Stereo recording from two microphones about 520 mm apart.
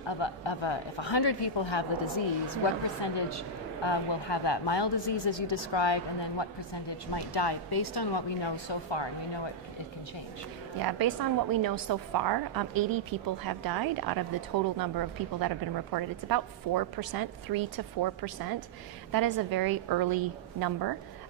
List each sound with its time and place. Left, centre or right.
0.2 s a woman's voice: left
10.8 s a woman's voice: right